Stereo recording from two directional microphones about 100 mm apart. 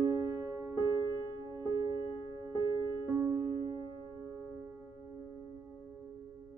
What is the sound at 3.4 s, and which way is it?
Music, 45° right (ahead or behind).